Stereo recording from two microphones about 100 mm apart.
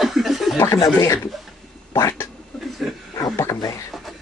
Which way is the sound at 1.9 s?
30° left (ahead or behind).